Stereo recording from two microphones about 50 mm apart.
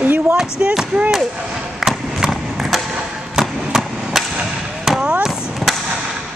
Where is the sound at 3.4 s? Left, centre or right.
Centre.